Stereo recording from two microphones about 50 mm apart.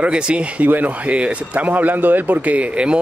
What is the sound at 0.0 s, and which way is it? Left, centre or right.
Speech, centre.